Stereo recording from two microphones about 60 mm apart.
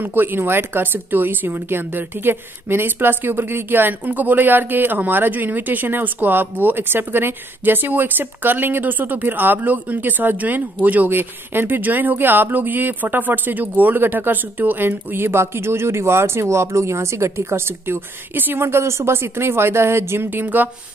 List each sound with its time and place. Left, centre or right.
0.0 s speech: right
20.2 s speech: right